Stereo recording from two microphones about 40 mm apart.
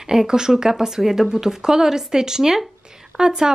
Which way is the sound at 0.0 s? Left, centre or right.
Centre.